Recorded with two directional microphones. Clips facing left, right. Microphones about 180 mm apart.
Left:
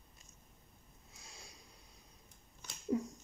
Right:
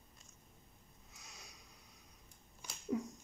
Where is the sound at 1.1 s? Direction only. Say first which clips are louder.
Left 2 dB; 30° left (ahead or behind).